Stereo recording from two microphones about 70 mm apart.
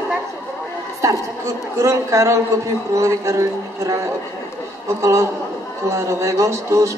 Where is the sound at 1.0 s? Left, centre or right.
Right.